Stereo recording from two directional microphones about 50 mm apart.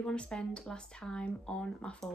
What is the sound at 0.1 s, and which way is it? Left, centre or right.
Speech, centre.